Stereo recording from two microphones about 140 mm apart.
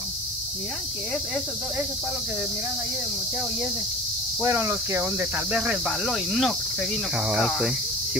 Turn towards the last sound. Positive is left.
turn(degrees=-5)  # may be behind; listen again after turning